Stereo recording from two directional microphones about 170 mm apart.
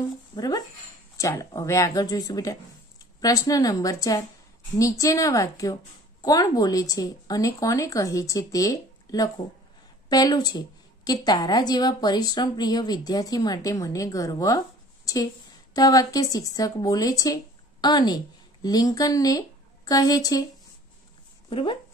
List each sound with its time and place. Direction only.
1.1 s a woman's voice: 20° left (ahead or behind)
21.5 s speech: 30° left (ahead or behind)